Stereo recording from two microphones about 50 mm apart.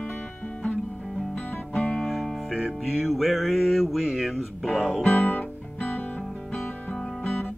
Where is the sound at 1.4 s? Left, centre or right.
Left.